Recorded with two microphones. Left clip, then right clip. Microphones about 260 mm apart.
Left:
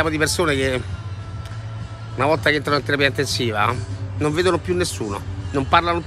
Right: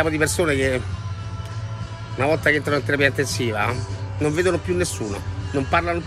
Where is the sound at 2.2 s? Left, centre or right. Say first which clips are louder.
Left 1 dB; centre.